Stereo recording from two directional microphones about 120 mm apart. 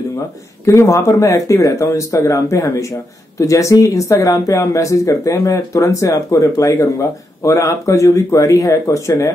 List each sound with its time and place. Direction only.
0.7 s speech: 25° left (ahead or behind)